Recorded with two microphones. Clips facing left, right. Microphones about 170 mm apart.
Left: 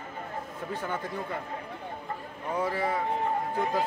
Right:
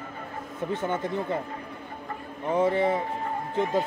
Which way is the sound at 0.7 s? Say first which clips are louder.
Right 5 dB; 20° right (ahead or behind).